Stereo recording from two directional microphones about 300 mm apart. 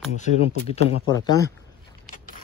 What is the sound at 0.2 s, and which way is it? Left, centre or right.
Speech, left.